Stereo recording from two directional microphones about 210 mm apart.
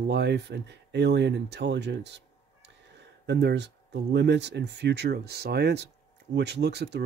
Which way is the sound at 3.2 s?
55° right (ahead or behind).